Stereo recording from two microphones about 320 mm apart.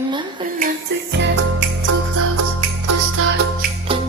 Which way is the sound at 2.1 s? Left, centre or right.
Right.